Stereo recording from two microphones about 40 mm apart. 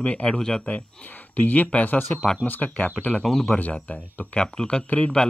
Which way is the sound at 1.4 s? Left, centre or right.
Left.